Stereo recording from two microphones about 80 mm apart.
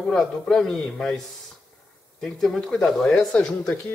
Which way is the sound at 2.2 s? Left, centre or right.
Centre.